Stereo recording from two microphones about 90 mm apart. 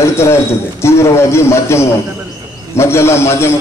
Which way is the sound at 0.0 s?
30° left (ahead or behind).